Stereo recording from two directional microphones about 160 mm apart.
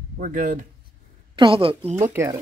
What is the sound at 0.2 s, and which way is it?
Speech, 55° right (ahead or behind).